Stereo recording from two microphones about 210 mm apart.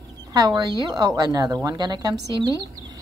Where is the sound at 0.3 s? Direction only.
20° right (ahead or behind).